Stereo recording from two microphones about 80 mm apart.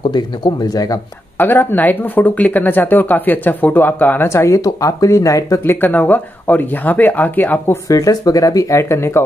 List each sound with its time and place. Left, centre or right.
0.1 s speech: left
1.4 s speech: left
5.6 s speech: left
7.9 s speech: left